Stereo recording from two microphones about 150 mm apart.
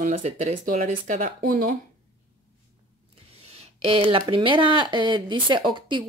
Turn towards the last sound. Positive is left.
turn(degrees=-30)  # may be behind; listen again after turning